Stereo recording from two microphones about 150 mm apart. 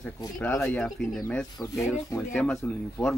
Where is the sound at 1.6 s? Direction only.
25° left (ahead or behind).